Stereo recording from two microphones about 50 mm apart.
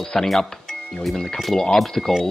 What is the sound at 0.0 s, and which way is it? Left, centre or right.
Speech, centre.